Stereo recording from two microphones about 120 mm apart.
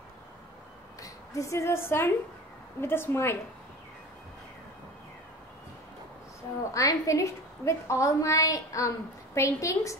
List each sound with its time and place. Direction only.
1.0 s a woman's voice: 25° left (ahead or behind)
6.7 s a woman's voice: 25° left (ahead or behind)